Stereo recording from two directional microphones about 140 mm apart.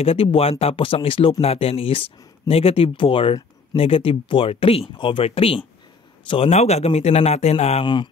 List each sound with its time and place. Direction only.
0.0 s a man's voice: 40° left (ahead or behind)
7.8 s speech: 35° left (ahead or behind)